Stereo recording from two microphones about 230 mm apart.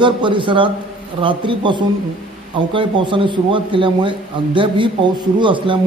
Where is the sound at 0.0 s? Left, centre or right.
Right.